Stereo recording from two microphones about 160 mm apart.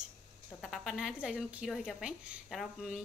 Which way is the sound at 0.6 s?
Centre (ahead or behind).